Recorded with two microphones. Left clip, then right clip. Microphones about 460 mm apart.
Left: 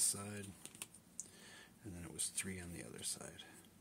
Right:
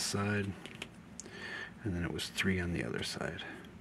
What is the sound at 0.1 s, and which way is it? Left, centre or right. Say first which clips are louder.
Speech: right 13 dB; left.